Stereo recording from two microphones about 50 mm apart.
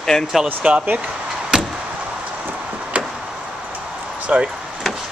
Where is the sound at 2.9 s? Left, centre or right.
Right.